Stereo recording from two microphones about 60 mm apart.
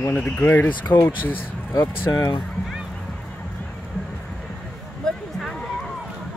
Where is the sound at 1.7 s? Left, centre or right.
Left.